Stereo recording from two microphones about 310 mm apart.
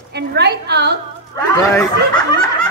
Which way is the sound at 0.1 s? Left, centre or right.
Right.